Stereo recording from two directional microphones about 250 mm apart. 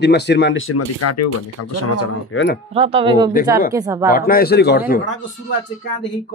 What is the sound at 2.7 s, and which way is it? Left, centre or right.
Speech, right.